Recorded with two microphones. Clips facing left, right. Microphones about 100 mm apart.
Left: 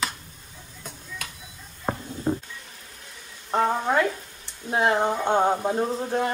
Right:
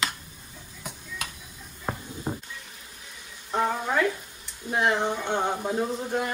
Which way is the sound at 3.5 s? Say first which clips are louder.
Left 3 dB; 25° left (ahead or behind).